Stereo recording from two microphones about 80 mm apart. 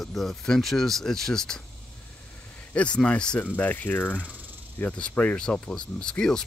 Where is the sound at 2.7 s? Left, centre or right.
Centre.